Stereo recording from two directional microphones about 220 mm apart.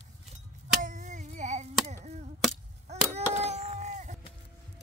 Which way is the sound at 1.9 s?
30° right (ahead or behind).